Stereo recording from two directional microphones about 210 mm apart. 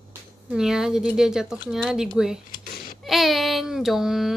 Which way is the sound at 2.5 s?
45° left (ahead or behind).